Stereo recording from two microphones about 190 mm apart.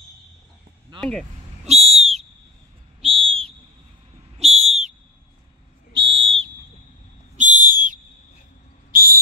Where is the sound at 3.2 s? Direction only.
30° right (ahead or behind).